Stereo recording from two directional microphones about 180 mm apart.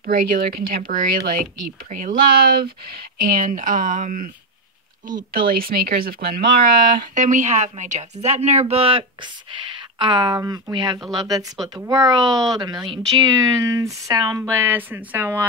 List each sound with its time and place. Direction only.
0.0 s speech: 55° right (ahead or behind)
5.3 s a woman's voice: 55° right (ahead or behind); by 15.4 s 10° right (ahead or behind)